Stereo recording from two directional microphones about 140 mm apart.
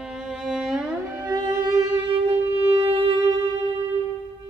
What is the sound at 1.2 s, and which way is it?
Music, 25° right (ahead or behind).